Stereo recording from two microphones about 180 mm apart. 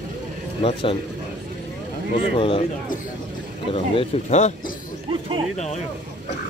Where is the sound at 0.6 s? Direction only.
30° left (ahead or behind).